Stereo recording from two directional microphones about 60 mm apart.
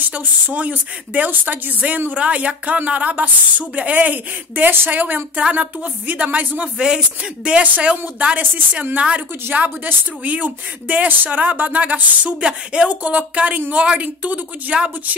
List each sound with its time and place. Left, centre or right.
0.0 s speech: right